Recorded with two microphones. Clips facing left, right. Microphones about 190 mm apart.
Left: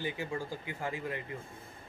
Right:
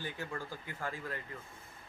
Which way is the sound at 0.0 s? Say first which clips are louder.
Left 5 dB; 15° left (ahead or behind).